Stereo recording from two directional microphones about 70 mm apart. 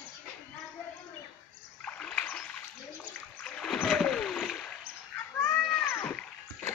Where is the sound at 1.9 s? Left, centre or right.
Centre.